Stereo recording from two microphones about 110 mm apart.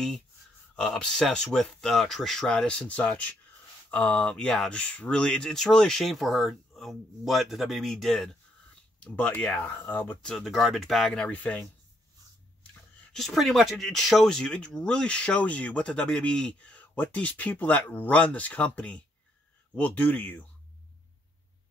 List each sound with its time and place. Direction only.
0.7 s speech: 5° left (ahead or behind)
9.0 s speech: 15° left (ahead or behind)
10.3 s speech: centre (ahead or behind)
13.1 s speech: centre (ahead or behind)